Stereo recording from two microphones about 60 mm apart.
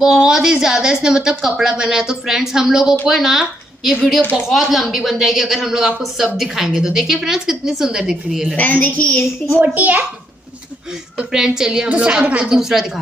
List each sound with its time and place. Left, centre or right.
0.0 s a woman's voice: centre
8.5 s a woman's voice: left
9.6 s a woman's voice: right
11.1 s a woman's voice: centre